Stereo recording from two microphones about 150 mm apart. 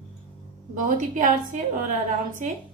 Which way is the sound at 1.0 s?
60° right (ahead or behind).